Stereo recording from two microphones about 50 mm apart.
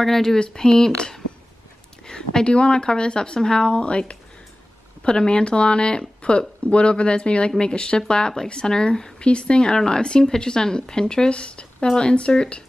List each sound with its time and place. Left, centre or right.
0.0 s speech: centre